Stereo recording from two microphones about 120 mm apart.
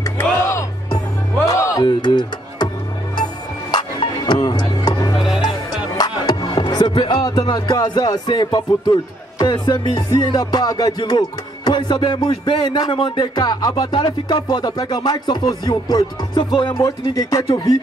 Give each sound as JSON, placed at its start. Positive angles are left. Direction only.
{"t": 0.2, "sound": "music", "side_deg": 25}
{"t": 1.9, "sound": "music", "side_deg": 40}
{"t": 3.7, "sound": "music", "side_deg": 40}
{"t": 5.5, "sound": "speech", "side_deg": 35}
{"t": 17.0, "sound": "speech", "side_deg": 30}